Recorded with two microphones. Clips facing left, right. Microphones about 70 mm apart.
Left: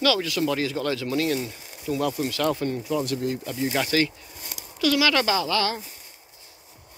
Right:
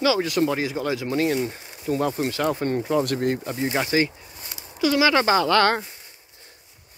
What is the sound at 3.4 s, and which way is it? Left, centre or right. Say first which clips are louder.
Speech: right 1 dB; right.